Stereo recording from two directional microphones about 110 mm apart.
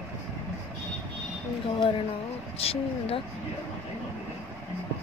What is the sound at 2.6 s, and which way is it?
Speech, 60° left (ahead or behind).